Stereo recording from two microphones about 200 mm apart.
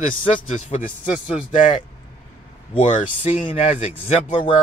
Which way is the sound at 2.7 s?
30° left (ahead or behind).